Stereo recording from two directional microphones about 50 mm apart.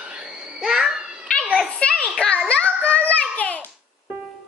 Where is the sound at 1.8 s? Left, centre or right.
Left.